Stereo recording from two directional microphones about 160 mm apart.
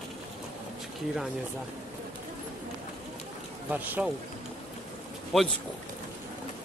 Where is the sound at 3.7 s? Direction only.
10° right (ahead or behind).